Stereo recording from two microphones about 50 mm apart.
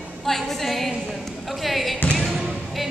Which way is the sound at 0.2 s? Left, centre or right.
Centre.